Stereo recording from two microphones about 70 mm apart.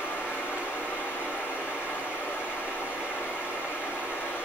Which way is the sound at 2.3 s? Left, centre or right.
Left.